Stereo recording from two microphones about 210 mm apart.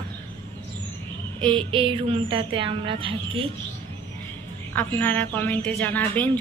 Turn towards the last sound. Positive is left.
turn(degrees=10)  # may be behind; listen again after turning